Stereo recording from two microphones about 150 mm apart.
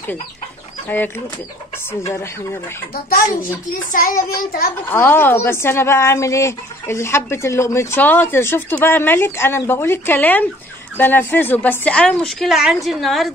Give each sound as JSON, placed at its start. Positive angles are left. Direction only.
{"t": 0.8, "sound": "speech", "side_deg": 10}
{"t": 3.9, "sound": "child singing", "side_deg": 65}
{"t": 4.8, "sound": "speech", "side_deg": 15}